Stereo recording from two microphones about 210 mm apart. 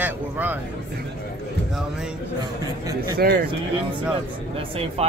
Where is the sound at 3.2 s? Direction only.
45° right (ahead or behind).